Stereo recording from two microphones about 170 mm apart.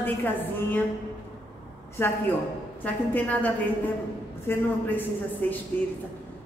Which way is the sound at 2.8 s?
10° left (ahead or behind).